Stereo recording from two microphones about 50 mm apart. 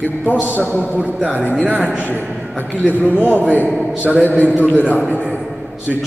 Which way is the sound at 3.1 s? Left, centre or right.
Left.